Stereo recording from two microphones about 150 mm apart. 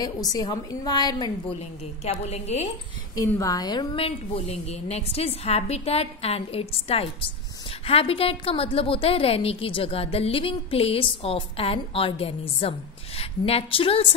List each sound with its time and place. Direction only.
0.0 s a woman's voice: 25° left (ahead or behind)
2.0 s a woman's voice: 45° left (ahead or behind)
3.2 s a woman's voice: 20° left (ahead or behind); by 14.0 s 35° left (ahead or behind)